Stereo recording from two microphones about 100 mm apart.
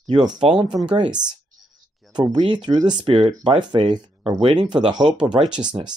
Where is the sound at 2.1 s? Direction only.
50° right (ahead or behind).